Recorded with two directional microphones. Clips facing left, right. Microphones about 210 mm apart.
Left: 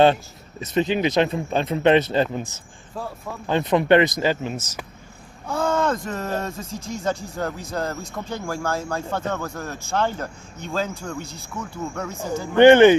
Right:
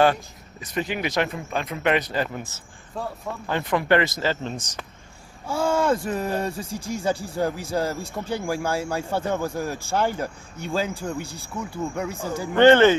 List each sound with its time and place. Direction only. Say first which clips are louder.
0.0 s speech: left 3 dB; 25° left (ahead or behind)
3.4 s speech: left 4 dB; 20° left (ahead or behind)
5.5 s speech: even; 10° right (ahead or behind)
12.5 s speech: left 3 dB; 15° left (ahead or behind)